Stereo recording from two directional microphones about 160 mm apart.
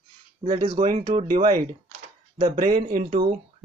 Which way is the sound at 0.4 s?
30° right (ahead or behind).